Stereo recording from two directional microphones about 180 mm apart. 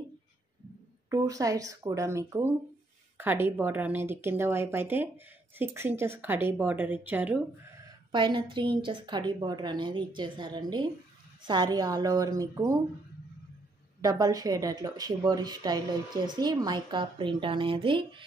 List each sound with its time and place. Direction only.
1.1 s a woman's voice: 20° right (ahead or behind)
8.1 s a woman's voice: 25° right (ahead or behind)
14.0 s a woman's voice: 20° right (ahead or behind)